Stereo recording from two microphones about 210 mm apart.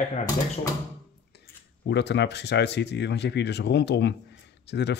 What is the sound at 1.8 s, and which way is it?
Speech, 55° left (ahead or behind).